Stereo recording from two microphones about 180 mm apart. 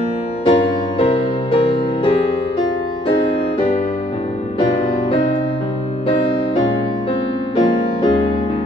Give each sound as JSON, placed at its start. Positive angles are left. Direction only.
{"t": 0.5, "sound": "music", "side_deg": 30}
{"t": 7.5, "sound": "music", "side_deg": 30}